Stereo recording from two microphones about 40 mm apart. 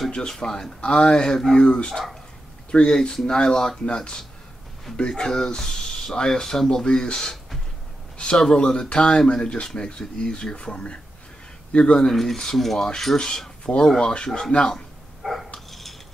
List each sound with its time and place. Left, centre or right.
0.3 s speech: centre
0.7 s speech: left
5.3 s speech: centre
8.4 s speech: centre
12.1 s speech: centre